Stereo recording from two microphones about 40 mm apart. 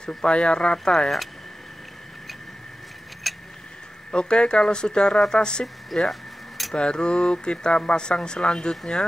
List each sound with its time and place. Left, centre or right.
0.2 s speech: left
0.9 s speech: centre
3.3 s a sound: centre
4.1 s speech: left
5.9 s speech: centre
6.7 s speech: left